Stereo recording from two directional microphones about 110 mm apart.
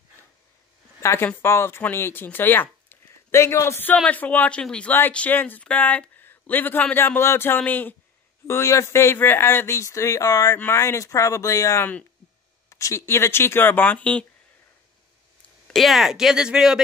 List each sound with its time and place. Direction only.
1.0 s speech: 20° left (ahead or behind)
15.7 s speech: centre (ahead or behind)